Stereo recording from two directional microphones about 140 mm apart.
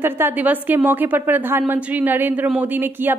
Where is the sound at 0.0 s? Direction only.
15° right (ahead or behind).